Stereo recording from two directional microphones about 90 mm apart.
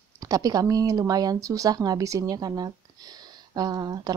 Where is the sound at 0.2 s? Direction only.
40° right (ahead or behind).